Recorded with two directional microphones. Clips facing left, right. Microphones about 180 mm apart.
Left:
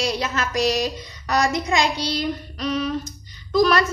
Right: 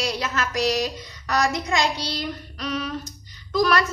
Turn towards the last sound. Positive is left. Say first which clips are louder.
# left 3 dB
turn(degrees=25)  # may be behind; listen again after turning